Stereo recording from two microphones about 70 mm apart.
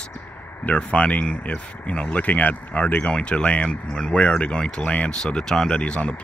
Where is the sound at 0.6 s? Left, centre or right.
Centre.